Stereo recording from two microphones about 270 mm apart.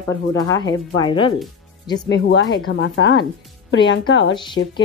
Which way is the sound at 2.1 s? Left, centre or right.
Left.